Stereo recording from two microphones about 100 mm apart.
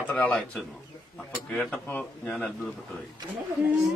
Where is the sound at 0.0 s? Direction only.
20° left (ahead or behind).